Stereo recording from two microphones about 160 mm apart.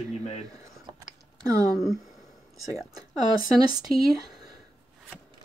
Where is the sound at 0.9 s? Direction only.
25° right (ahead or behind).